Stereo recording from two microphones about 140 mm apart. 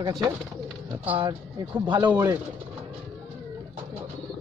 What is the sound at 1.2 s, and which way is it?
Speech, 35° right (ahead or behind).